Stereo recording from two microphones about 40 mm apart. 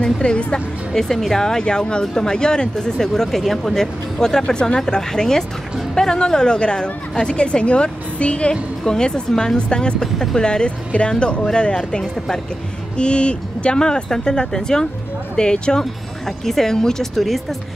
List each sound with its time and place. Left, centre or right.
0.0 s speech: left
0.9 s speech: centre; by 8.5 s left
8.8 s speech: centre
10.1 s speech: centre
10.4 s speech: left
15.8 s speech: centre